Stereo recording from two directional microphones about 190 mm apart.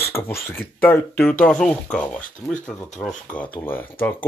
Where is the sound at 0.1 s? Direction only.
15° left (ahead or behind).